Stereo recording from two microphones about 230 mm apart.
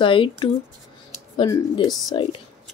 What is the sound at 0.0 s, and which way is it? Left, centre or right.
Speech, left.